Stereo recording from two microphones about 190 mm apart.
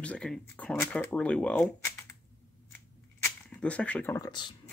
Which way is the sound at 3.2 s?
5° left (ahead or behind).